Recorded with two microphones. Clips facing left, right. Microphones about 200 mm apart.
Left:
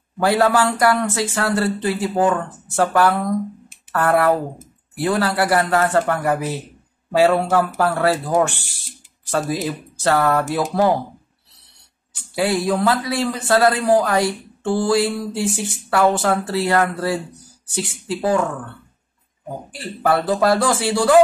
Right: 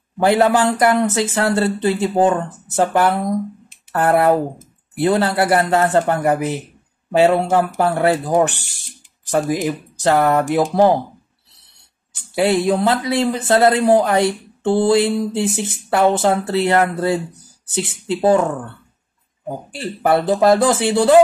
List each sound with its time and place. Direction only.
0.2 s a man's voice: 20° right (ahead or behind)
12.4 s a man's voice: 25° right (ahead or behind)
19.7 s a man's voice: 25° right (ahead or behind)